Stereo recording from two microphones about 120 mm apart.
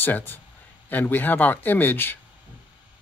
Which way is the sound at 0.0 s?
15° left (ahead or behind).